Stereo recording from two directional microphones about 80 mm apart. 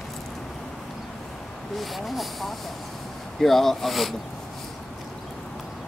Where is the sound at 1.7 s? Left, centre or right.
Centre.